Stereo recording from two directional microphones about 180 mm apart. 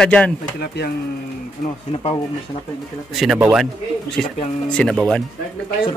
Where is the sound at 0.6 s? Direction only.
65° left (ahead or behind).